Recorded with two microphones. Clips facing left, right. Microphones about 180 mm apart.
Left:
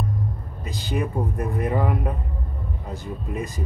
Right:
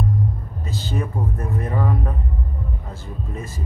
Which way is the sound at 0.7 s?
15° left (ahead or behind).